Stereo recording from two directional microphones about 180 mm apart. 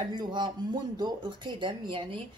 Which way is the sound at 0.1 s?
25° right (ahead or behind).